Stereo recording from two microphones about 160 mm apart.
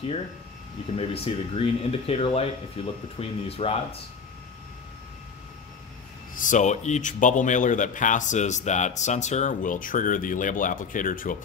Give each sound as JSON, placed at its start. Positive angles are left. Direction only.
{"t": 0.9, "sound": "speech", "side_deg": 35}
{"t": 6.3, "sound": "a man's voice", "side_deg": 55}